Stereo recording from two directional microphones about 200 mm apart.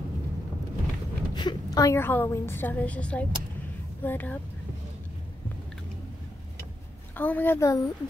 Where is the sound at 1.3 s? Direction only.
20° left (ahead or behind).